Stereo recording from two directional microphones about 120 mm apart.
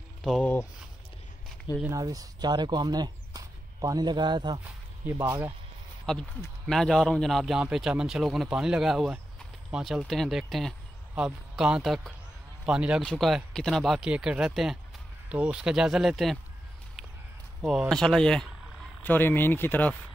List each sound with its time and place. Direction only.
0.2 s speech: centre (ahead or behind)
1.9 s speech: 30° right (ahead or behind)
5.2 s speech: 20° right (ahead or behind)
6.1 s a man's voice: 5° left (ahead or behind)
13.0 s a man's voice: 5° left (ahead or behind)
17.6 s a man's voice: centre (ahead or behind)
19.0 s speech: 15° left (ahead or behind)